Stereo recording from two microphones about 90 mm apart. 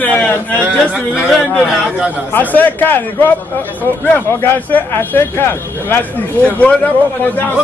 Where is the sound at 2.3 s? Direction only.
20° left (ahead or behind).